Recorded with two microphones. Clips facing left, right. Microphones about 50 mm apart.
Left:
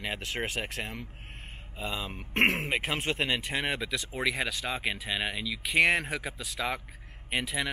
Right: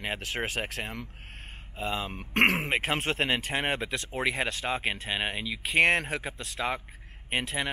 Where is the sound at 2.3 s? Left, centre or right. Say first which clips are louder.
Right 2 dB; centre.